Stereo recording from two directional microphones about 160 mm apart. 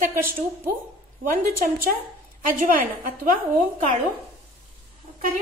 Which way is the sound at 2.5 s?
60° right (ahead or behind).